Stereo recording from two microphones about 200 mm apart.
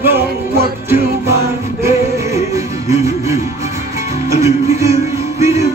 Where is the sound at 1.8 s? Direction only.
15° right (ahead or behind).